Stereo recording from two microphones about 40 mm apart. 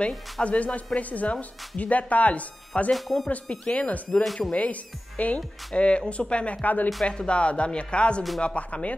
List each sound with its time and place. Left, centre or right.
0.4 s speech: left
2.9 s speech: centre
3.4 s speech: left
4.1 s speech: centre
4.4 s speech: left